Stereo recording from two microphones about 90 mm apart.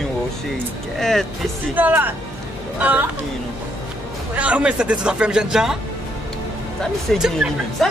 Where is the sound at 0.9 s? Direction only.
5° left (ahead or behind).